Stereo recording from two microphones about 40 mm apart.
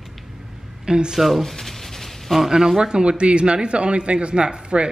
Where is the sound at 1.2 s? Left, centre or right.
Centre.